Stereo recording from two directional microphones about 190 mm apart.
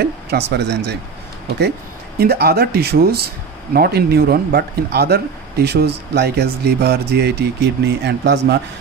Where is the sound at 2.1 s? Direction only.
55° right (ahead or behind).